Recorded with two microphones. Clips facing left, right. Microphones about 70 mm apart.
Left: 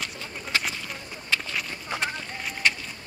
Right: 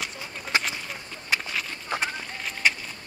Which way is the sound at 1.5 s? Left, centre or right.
Centre.